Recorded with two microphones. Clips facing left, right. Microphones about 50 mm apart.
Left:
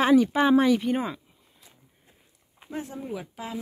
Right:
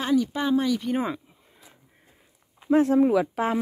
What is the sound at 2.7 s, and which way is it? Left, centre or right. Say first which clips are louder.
Speech: right 16 dB; right.